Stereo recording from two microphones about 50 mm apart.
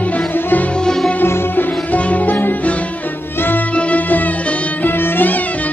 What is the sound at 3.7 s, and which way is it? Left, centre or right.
Music, left.